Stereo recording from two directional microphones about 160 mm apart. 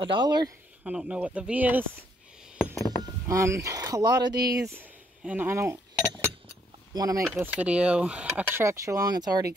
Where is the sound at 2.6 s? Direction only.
20° left (ahead or behind).